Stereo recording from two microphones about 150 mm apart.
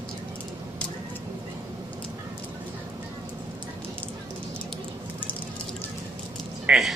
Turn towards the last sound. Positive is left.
turn(degrees=0)  # may be behind; listen again after turning